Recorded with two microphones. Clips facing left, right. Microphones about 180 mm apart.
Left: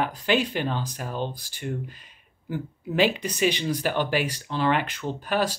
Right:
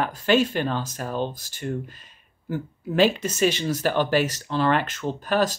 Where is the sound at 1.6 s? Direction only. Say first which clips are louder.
Right 2 dB; 15° left (ahead or behind).